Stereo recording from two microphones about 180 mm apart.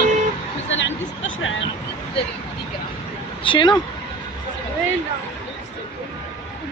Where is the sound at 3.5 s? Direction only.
25° left (ahead or behind).